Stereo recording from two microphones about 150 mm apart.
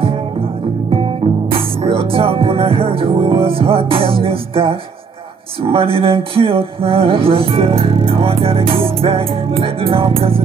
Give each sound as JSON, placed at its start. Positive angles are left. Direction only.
{"t": 1.8, "sound": "music", "side_deg": -40}